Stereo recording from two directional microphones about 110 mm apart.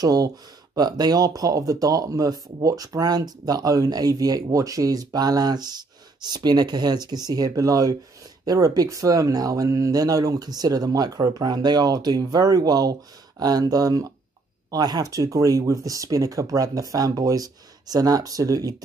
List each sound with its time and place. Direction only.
0.0 s speech: 35° right (ahead or behind)